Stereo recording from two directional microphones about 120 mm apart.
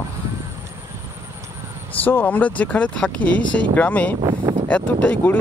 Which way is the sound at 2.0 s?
15° left (ahead or behind).